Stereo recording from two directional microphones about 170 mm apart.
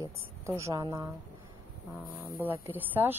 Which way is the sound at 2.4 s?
10° right (ahead or behind).